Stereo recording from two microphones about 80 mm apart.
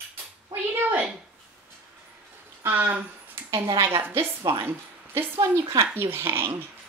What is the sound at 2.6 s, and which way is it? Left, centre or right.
A woman's voice, right.